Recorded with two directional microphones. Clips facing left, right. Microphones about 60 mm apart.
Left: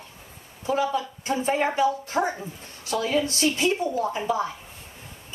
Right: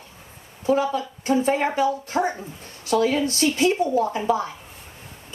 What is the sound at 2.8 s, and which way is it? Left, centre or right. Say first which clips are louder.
Speech: right 4 dB; right.